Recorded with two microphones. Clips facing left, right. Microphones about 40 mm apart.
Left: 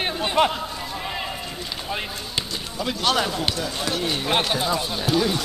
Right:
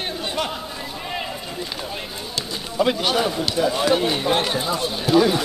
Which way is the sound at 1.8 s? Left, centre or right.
Centre.